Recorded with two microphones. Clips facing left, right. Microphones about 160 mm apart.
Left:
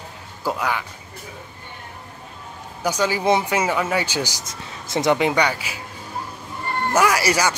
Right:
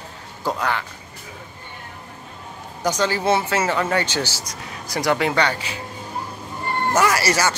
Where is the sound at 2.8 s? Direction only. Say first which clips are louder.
Even; 10° left (ahead or behind).